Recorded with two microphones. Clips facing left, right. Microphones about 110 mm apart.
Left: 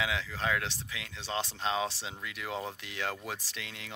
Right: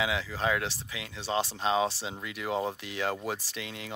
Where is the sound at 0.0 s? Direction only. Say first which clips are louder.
Right 3 dB; 5° right (ahead or behind).